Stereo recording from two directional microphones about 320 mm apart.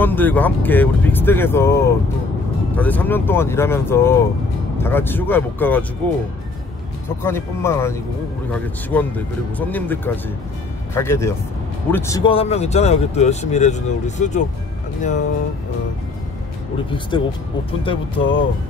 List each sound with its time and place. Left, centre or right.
0.0 s speech: centre
7.2 s speech: centre
17.1 s speech: centre